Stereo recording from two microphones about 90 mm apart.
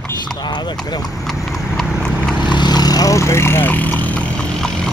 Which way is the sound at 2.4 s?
55° left (ahead or behind).